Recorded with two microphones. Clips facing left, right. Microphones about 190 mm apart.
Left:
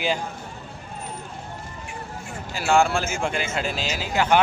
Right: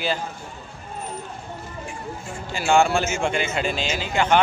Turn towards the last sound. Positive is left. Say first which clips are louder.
# right 1 dB
turn(degrees=5)  # may be behind; listen again after turning